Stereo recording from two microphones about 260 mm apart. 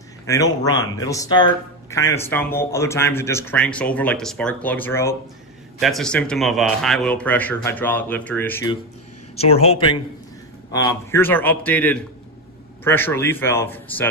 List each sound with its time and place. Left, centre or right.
0.3 s a man's voice: centre
9.4 s a man's voice: left
10.7 s a man's voice: centre